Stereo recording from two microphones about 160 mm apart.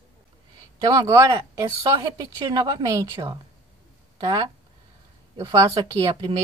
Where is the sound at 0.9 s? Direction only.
20° right (ahead or behind).